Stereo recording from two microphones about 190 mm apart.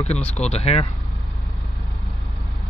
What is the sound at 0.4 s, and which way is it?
Speech, 35° left (ahead or behind).